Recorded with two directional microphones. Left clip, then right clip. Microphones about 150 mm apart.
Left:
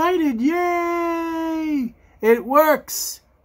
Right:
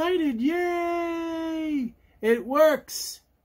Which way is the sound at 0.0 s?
10° left (ahead or behind).